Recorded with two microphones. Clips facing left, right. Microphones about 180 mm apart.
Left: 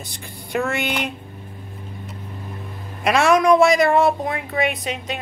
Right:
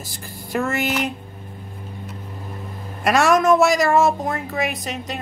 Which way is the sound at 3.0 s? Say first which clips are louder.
Even; centre (ahead or behind).